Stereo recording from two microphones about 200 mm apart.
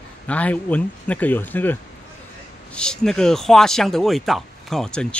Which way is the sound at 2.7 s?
5° left (ahead or behind).